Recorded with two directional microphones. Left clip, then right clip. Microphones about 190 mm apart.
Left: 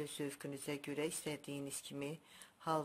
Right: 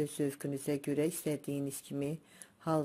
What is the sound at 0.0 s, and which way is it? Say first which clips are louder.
Speech: right 9 dB; 15° right (ahead or behind).